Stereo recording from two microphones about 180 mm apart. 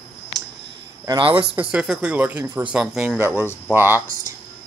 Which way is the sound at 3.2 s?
15° right (ahead or behind).